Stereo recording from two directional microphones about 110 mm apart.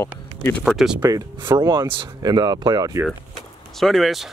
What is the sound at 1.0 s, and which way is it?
Speech, 35° right (ahead or behind).